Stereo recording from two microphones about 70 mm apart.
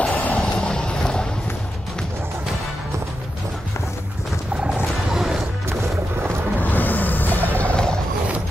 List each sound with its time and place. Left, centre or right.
0.1 s a sound: left
0.4 s clip-clop: centre
4.7 s roaring cats: centre
6.6 s music: left